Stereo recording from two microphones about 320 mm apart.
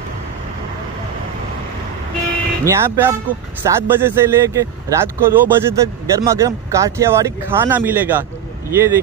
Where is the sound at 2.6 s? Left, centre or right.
Centre.